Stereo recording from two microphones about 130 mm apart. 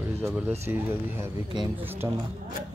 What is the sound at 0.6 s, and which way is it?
Speech, 15° right (ahead or behind).